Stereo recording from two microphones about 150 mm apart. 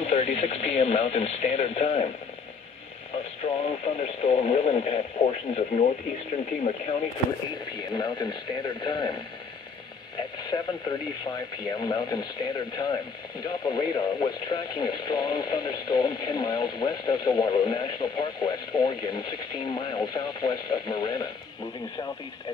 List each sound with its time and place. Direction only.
0.0 s speech: 45° left (ahead or behind)
3.4 s speech: 45° left (ahead or behind)
7.9 s speech: 30° left (ahead or behind)
10.5 s speech: 25° left (ahead or behind)